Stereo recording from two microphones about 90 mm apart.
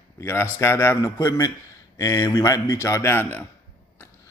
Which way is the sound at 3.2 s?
20° left (ahead or behind).